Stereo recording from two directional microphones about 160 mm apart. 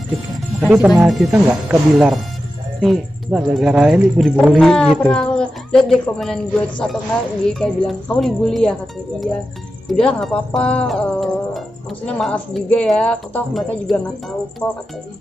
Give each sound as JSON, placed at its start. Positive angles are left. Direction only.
{"t": 0.6, "sound": "speech", "side_deg": -5}
{"t": 3.3, "sound": "speech", "side_deg": -10}
{"t": 9.8, "sound": "speech", "side_deg": 5}
{"t": 14.6, "sound": "speech", "side_deg": 20}